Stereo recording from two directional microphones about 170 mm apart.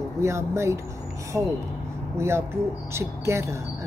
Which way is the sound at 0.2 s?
15° right (ahead or behind).